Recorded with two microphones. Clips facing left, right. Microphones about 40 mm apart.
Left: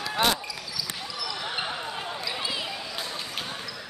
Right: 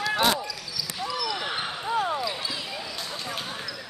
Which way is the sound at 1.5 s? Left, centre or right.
Centre.